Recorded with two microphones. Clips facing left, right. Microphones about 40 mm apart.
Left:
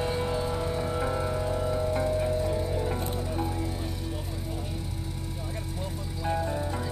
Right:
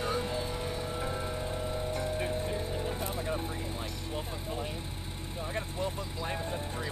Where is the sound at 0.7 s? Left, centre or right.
Left.